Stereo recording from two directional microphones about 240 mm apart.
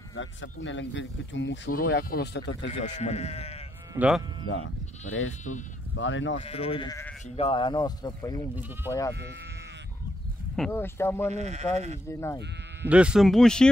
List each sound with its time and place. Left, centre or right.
0.1 s speech: left
2.8 s speech: left
3.9 s speech: centre
4.5 s speech: left
5.9 s speech: left
6.3 s speech: left
7.2 s speech: left
10.5 s speech: centre
11.3 s speech: right
12.1 s speech: centre
12.8 s speech: centre